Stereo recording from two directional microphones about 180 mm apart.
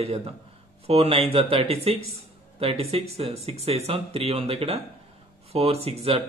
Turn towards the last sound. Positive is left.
turn(degrees=-35)  # may be behind; listen again after turning